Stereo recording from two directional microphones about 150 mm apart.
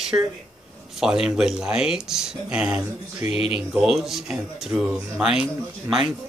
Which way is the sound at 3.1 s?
45° left (ahead or behind).